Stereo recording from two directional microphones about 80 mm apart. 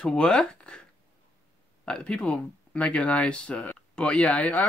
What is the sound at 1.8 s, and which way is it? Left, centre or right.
Speech, centre.